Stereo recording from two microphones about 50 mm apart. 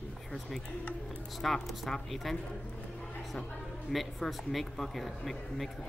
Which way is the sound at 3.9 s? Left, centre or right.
Centre.